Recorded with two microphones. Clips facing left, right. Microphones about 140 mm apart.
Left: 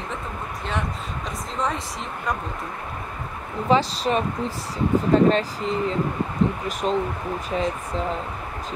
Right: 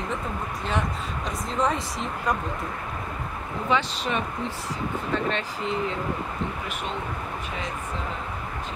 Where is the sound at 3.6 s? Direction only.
35° left (ahead or behind).